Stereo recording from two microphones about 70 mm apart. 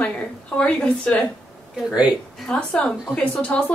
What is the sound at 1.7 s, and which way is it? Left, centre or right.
Speech, centre.